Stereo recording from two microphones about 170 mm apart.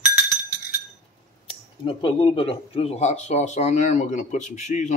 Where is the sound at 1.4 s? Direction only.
30° left (ahead or behind).